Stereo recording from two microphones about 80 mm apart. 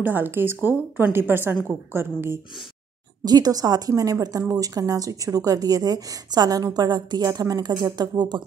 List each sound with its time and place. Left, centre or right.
0.0 s a woman's voice: right
3.3 s a woman's voice: right